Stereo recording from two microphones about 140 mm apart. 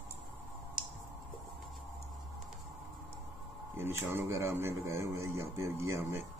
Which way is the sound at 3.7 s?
15° right (ahead or behind).